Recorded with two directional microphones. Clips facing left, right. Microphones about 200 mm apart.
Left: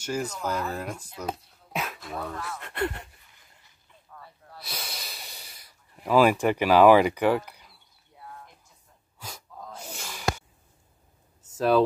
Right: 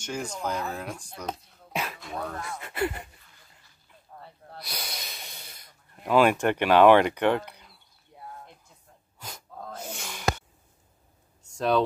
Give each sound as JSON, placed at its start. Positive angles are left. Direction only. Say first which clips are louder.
{"t": 0.0, "sound": "speech", "louder": "left 2 dB", "side_deg": 5}
{"t": 4.1, "sound": "snort", "louder": "right 2 dB", "side_deg": -30}
{"t": 4.6, "sound": "snort", "louder": "even", "side_deg": 5}
{"t": 9.6, "sound": "a sound", "louder": "right 4 dB", "side_deg": -60}
{"t": 9.9, "sound": "snort", "louder": "even", "side_deg": 5}
{"t": 11.4, "sound": "a sound", "louder": "left 3 dB", "side_deg": 5}